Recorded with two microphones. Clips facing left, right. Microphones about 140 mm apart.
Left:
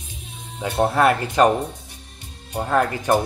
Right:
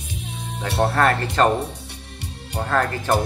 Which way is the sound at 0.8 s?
10° left (ahead or behind).